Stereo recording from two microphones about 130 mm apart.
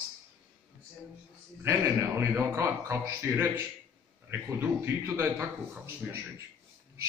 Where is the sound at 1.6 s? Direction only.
20° right (ahead or behind).